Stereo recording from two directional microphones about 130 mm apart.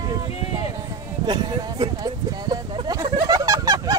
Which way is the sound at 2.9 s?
30° right (ahead or behind).